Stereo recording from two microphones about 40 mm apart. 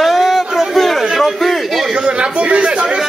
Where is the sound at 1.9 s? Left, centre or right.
Right.